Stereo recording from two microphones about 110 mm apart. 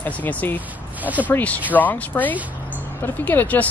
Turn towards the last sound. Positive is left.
turn(degrees=15)  # may be behind; listen again after turning